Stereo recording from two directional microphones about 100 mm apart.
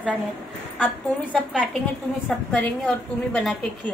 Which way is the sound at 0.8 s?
15° left (ahead or behind).